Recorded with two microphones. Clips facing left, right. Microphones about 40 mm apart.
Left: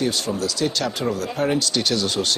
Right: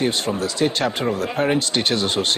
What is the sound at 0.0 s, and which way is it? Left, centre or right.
Speech, right.